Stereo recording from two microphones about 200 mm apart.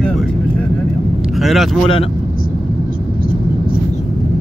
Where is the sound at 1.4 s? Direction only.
Centre (ahead or behind).